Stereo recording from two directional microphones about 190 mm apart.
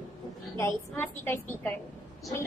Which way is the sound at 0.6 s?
10° left (ahead or behind).